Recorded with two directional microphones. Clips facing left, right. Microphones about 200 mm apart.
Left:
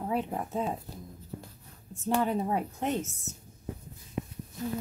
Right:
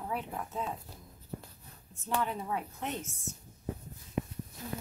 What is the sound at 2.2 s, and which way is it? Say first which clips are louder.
Speech: left 6 dB; 40° left (ahead or behind).